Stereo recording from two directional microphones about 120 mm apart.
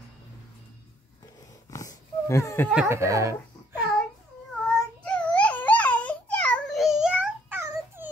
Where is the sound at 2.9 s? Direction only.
25° right (ahead or behind).